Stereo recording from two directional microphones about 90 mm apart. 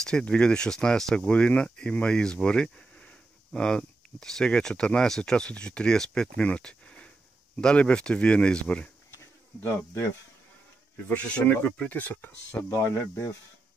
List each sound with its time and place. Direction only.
0.0 s speech: 10° left (ahead or behind)
9.1 s insect: 25° left (ahead or behind)
11.1 s speech: 20° left (ahead or behind)